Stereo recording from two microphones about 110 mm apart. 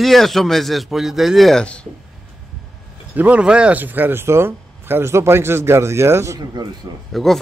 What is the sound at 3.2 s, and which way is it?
A man's voice, 10° right (ahead or behind).